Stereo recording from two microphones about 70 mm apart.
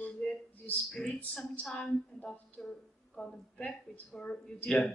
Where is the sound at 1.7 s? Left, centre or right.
Centre.